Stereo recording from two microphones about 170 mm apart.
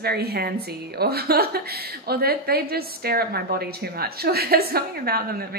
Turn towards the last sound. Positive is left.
turn(degrees=-65)  # may be behind; listen again after turning